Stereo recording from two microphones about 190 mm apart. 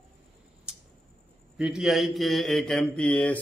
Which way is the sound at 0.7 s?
5° right (ahead or behind).